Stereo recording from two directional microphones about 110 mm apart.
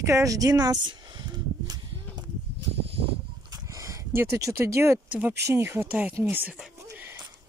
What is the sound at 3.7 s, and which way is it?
Speech, 25° right (ahead or behind).